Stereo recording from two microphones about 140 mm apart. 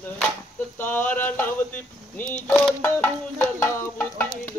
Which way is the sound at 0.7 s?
15° left (ahead or behind).